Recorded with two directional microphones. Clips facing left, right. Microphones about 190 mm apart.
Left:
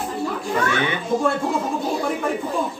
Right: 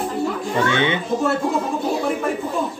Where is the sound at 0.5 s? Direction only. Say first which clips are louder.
Right 3 dB; 25° right (ahead or behind).